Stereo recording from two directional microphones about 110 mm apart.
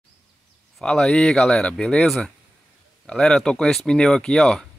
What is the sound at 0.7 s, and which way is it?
Speech, 5° left (ahead or behind).